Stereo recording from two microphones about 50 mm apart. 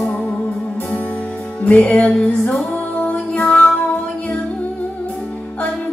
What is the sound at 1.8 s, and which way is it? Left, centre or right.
Music, centre.